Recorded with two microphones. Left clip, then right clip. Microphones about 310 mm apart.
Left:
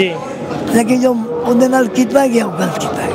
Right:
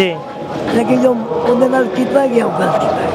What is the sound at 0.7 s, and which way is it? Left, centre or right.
Speech, left.